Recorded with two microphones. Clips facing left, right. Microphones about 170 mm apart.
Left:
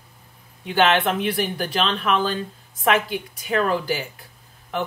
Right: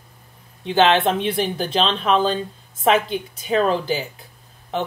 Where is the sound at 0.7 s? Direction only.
25° right (ahead or behind).